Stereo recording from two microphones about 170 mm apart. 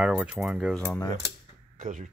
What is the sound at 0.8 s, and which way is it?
Cutlery, 10° left (ahead or behind).